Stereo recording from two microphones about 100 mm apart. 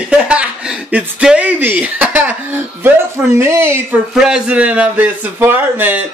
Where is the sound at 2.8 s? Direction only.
25° right (ahead or behind).